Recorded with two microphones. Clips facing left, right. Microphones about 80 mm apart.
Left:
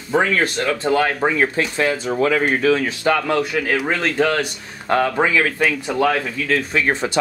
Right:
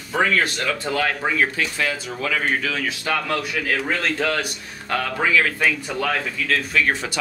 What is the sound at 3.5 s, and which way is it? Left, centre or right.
Speech, centre.